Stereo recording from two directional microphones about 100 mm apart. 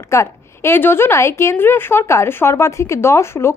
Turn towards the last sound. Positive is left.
turn(degrees=25)  # may be behind; listen again after turning